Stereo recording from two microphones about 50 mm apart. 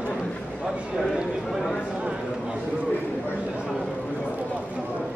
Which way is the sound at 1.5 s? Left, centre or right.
Centre.